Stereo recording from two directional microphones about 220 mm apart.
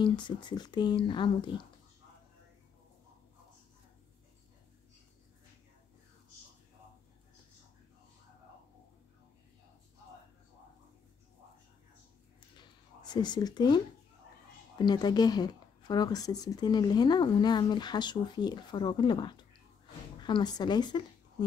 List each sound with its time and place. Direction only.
0.0 s speech: 20° left (ahead or behind)
12.5 s a sound: 20° left (ahead or behind)
14.8 s speech: 20° left (ahead or behind)